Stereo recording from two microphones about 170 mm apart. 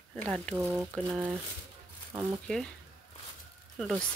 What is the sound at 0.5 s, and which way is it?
Speech, 10° right (ahead or behind).